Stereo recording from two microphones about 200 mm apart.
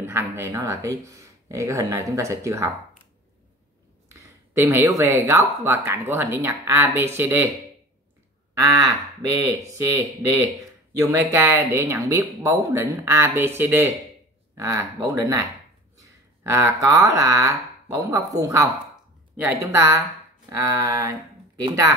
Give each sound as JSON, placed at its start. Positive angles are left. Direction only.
{"t": 0.0, "sound": "speech", "side_deg": -10}
{"t": 4.2, "sound": "speech", "side_deg": -15}
{"t": 9.8, "sound": "speech", "side_deg": -15}
{"t": 16.4, "sound": "speech", "side_deg": -15}
{"t": 20.4, "sound": "a sound", "side_deg": -20}
{"t": 21.6, "sound": "speech", "side_deg": -20}